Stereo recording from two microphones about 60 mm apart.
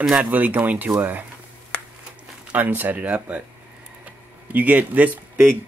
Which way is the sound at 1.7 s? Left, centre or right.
Left.